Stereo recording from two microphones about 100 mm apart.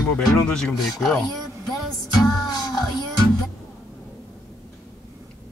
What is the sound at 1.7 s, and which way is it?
Music, centre (ahead or behind).